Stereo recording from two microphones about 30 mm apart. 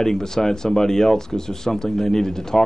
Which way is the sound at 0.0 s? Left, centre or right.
Centre.